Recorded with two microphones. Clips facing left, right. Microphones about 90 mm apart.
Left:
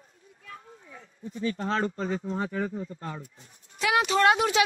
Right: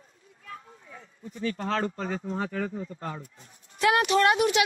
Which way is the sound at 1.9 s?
60° right (ahead or behind).